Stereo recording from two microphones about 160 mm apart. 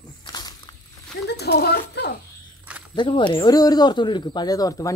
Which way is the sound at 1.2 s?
90° left.